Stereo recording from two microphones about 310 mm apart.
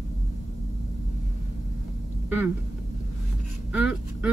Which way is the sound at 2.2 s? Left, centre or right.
Centre.